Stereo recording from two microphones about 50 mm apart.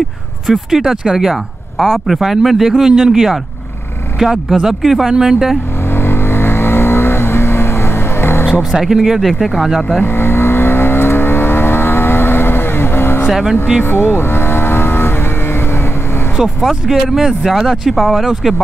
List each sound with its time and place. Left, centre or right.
0.7 s speech: centre
1.8 s speech: centre
2.1 s speech: centre
5.9 s vehicle: left
8.8 s speech: centre
10.0 s vehicle: left
13.3 s speech: centre
13.8 s vehicle: left
16.8 s speech: centre